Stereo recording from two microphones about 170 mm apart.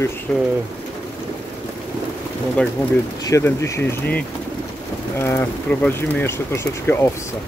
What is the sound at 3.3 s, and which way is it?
Speech, 15° left (ahead or behind).